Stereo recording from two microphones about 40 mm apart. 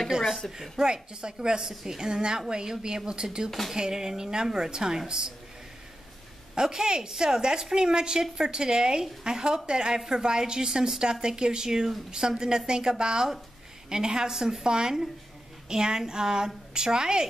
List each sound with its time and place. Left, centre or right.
0.6 s a woman's voice: centre
3.4 s speech: centre
3.7 s a woman's voice: centre
6.5 s a woman's voice: centre